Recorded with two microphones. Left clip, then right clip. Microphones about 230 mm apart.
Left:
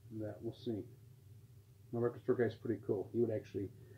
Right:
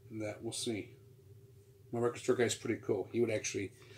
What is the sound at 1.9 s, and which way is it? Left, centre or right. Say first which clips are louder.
Speech: right 3 dB; right.